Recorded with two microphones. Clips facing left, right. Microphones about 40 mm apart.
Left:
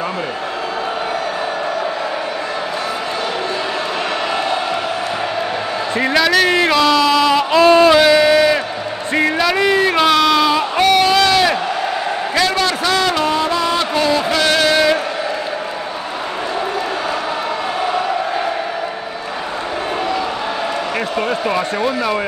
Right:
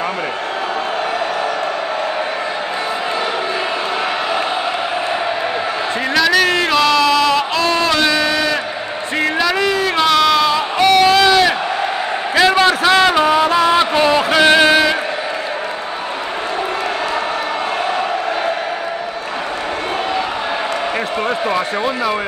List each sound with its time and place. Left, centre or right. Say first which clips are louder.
5.9 s speech: left 1 dB; centre
7.6 s a sound: left 9 dB; centre
12.4 s music: right 6 dB; right